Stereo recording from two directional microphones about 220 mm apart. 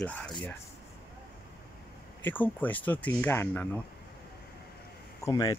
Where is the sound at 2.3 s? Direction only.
10° left (ahead or behind).